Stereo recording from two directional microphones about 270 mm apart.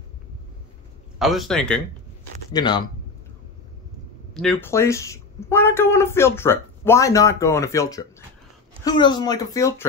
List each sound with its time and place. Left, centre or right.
1.2 s speech: centre
2.5 s speech: centre
4.3 s speech: centre